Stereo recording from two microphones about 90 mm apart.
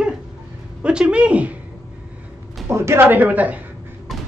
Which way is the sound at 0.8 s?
10° right (ahead or behind).